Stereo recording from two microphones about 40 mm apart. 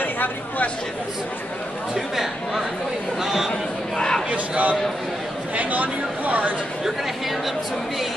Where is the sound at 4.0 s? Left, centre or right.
Centre.